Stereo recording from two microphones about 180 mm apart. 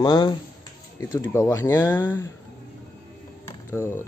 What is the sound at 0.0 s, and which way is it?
Speech, 25° left (ahead or behind).